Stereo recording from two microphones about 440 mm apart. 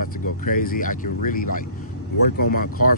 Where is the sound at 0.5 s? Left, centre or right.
Centre.